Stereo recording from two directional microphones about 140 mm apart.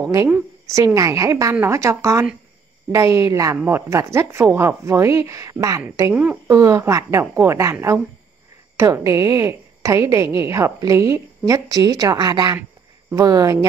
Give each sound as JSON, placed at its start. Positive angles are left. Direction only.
{"t": 0.0, "sound": "a woman's voice", "side_deg": -25}
{"t": 8.7, "sound": "a woman's voice", "side_deg": -20}